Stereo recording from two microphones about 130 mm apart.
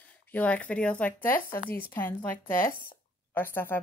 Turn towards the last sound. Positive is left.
turn(degrees=15)  # may be behind; listen again after turning